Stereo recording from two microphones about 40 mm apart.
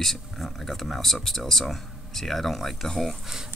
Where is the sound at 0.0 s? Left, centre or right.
Centre.